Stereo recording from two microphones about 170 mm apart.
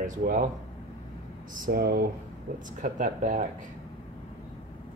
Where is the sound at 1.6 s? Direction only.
65° right (ahead or behind).